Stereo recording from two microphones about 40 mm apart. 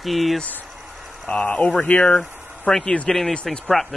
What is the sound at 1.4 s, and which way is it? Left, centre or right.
Speech, left.